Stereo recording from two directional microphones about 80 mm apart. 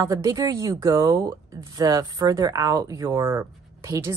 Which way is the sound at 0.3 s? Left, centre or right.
Right.